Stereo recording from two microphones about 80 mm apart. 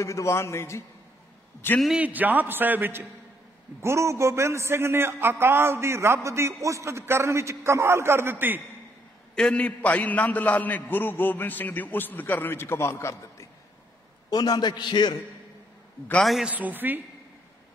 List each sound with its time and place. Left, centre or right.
0.0 s a man's voice: left
2.0 s a man's voice: right
3.8 s a man's voice: right
9.3 s a man's voice: centre; by 13.5 s left
14.3 s a man's voice: left
16.2 s a man's voice: centre
16.4 s a man's voice: centre